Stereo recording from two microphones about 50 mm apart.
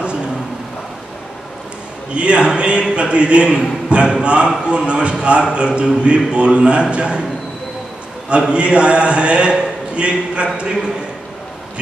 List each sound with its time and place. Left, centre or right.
2.1 s a man's voice: right
8.3 s a man's voice: right